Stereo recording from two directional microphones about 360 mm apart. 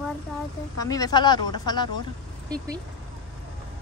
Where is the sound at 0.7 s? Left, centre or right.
Centre.